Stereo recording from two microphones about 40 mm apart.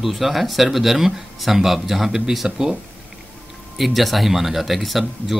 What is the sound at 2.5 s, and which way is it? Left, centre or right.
Speech, centre.